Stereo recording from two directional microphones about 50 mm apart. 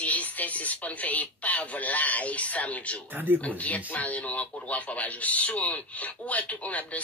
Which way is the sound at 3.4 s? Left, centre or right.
Left.